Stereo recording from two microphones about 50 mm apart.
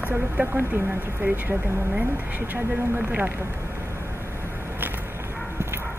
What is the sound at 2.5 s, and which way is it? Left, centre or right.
Speech, right.